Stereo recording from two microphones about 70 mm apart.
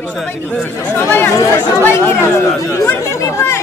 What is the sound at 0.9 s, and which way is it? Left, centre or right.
Speech, left.